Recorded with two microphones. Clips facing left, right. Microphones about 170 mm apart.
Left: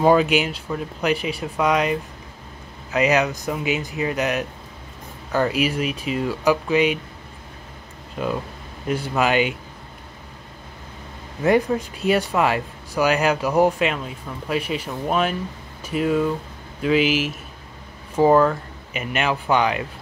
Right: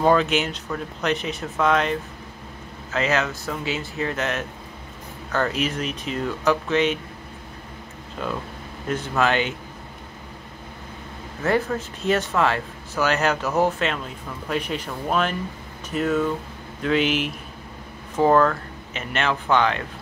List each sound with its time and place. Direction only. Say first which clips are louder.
0.0 s speech: left 2 dB; 10° left (ahead or behind)
8.8 s speech: left 1 dB; 10° left (ahead or behind)
11.4 s speech: left 4 dB; 15° left (ahead or behind)